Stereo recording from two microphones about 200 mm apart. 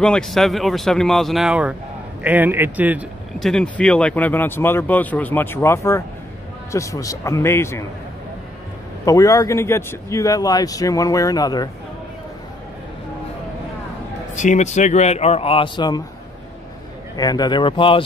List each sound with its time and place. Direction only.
0.0 s speech: 5° left (ahead or behind)
9.0 s speech: 15° left (ahead or behind)
14.3 s a man's voice: 40° left (ahead or behind); by 16.0 s 20° left (ahead or behind)
17.2 s speech: 20° left (ahead or behind)